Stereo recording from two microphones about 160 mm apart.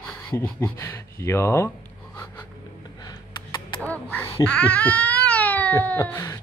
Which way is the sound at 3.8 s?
10° left (ahead or behind).